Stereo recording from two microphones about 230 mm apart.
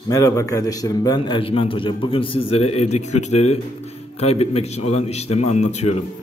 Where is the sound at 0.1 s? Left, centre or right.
Centre.